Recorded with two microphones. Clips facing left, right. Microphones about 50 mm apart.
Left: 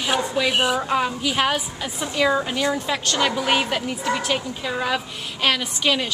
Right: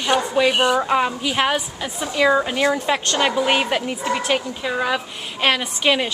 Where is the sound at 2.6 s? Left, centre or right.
Right; by 5.0 s centre.